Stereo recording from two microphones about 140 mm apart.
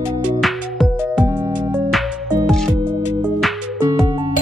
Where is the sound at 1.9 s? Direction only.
5° right (ahead or behind).